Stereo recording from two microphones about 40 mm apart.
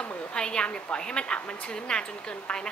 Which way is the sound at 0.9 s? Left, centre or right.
Left.